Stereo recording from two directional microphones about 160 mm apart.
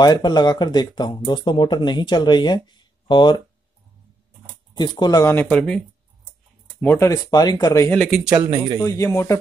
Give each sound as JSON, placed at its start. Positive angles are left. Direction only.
{"t": 0.0, "sound": "speech", "side_deg": 25}
{"t": 4.7, "sound": "speech", "side_deg": 25}
{"t": 7.9, "sound": "speech", "side_deg": 0}
{"t": 8.8, "sound": "speech", "side_deg": 20}